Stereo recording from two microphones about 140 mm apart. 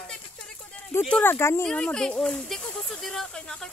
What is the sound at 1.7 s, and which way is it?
Speech, 5° left (ahead or behind).